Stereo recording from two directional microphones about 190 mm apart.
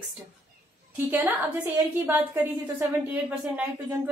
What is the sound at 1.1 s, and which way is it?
A woman's voice, 10° right (ahead or behind).